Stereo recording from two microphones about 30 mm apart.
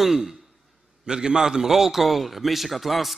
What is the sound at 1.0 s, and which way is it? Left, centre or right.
A man's voice, right.